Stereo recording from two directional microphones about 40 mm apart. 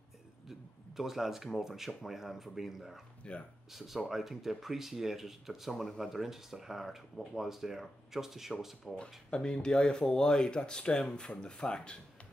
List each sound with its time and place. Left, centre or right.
0.5 s speech: centre
1.9 s speech: centre
3.2 s speech: left
3.7 s speech: centre
8.8 s speech: left